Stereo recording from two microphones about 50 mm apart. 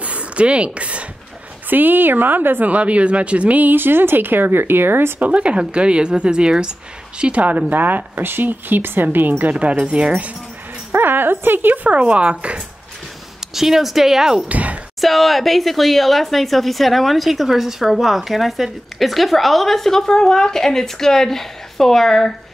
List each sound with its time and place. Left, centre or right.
0.0 s a sound: right
1.7 s speech: right
2.7 s speech: right
5.2 s speech: right
7.7 s speech: right
9.4 s speech: right
10.9 s speech: right
11.9 s speech: right
13.6 s speech: centre
14.5 s speech: right
15.0 s a woman's voice: centre